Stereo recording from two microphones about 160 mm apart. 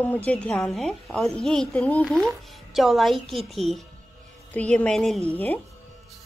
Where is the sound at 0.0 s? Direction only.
10° left (ahead or behind).